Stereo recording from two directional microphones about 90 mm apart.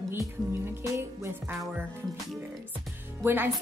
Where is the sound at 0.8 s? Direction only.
30° right (ahead or behind).